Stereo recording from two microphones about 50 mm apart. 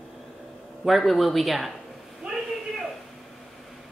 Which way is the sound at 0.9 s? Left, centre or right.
Centre.